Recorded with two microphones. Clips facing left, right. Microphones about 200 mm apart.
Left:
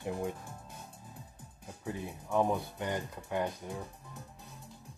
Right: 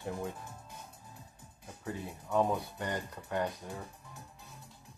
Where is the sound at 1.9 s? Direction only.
15° left (ahead or behind).